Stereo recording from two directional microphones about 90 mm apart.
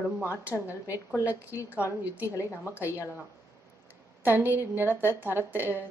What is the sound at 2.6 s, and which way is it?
Speech, 20° right (ahead or behind).